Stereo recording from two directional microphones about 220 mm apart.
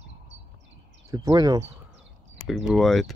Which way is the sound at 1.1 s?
20° right (ahead or behind).